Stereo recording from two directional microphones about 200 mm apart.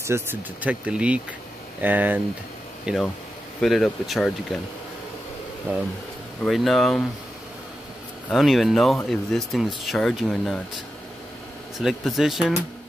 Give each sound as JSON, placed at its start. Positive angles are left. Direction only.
{"t": 0.0, "sound": "speech", "side_deg": -10}
{"t": 6.4, "sound": "speech", "side_deg": 0}
{"t": 8.3, "sound": "speech", "side_deg": 0}
{"t": 11.8, "sound": "speech", "side_deg": 0}